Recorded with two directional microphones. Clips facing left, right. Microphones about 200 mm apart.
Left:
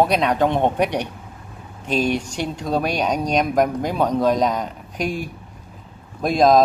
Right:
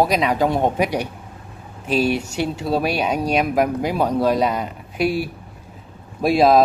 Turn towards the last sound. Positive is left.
turn(degrees=-5)  # may be behind; listen again after turning